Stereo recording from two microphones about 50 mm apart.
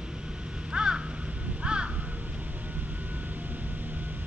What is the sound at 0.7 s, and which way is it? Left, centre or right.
Crow, centre.